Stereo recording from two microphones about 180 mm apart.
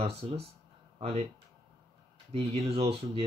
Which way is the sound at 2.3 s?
35° right (ahead or behind).